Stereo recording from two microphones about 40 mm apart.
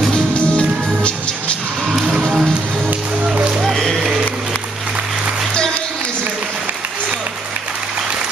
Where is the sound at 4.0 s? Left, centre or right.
Centre.